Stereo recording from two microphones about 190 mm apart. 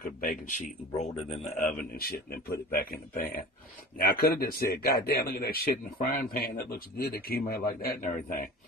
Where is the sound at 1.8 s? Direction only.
50° left (ahead or behind).